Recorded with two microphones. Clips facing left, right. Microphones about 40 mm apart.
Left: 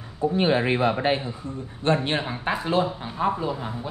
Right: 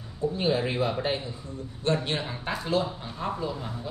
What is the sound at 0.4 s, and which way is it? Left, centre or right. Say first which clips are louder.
A man's voice: left 5 dB; left.